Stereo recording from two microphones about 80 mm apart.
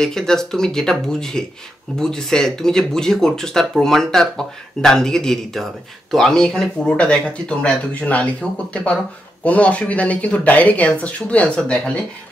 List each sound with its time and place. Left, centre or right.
0.0 s speech: centre